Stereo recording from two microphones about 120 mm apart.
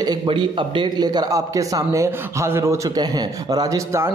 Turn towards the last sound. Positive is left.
turn(degrees=-25)  # may be behind; listen again after turning